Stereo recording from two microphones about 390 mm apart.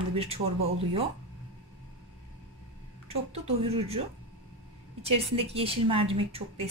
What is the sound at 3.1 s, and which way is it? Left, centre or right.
Speech, centre.